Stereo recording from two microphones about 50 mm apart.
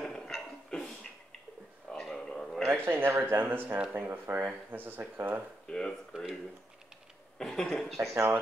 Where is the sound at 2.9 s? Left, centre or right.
Right.